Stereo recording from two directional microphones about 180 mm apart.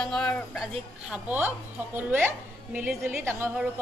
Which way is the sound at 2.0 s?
10° right (ahead or behind).